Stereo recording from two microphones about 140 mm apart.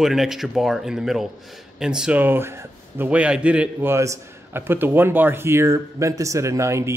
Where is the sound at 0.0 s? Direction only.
Centre (ahead or behind).